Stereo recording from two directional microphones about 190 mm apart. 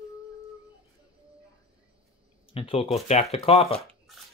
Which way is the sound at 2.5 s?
30° left (ahead or behind).